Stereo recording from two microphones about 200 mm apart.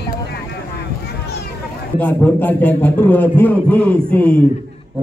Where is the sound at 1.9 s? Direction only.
10° left (ahead or behind).